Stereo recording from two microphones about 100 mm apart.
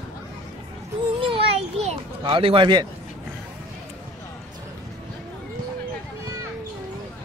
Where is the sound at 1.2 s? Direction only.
65° right (ahead or behind).